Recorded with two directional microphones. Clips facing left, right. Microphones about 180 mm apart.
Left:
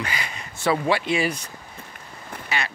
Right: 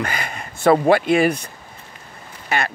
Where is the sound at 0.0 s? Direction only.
50° right (ahead or behind).